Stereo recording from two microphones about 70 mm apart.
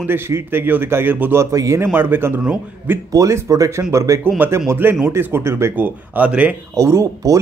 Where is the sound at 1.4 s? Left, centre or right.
Right.